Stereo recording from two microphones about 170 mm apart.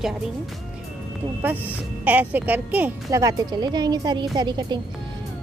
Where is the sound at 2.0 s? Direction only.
10° right (ahead or behind); by 4.8 s 25° right (ahead or behind).